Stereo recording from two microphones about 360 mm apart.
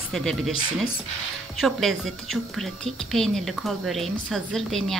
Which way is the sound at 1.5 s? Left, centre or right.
Centre.